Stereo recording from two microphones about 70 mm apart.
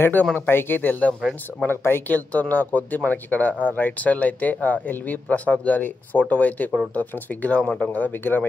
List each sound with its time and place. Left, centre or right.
0.0 s speech: left
2.1 s speech: left
7.9 s speech: left